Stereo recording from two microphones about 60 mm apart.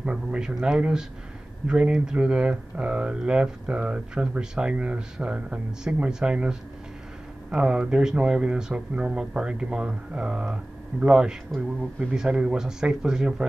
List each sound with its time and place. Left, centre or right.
0.0 s speech: centre